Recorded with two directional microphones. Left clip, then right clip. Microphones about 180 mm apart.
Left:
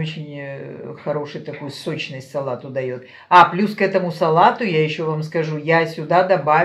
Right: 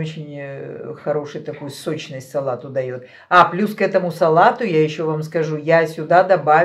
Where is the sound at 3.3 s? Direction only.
20° right (ahead or behind).